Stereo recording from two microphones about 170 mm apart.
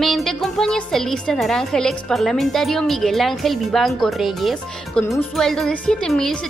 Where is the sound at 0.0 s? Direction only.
Centre (ahead or behind).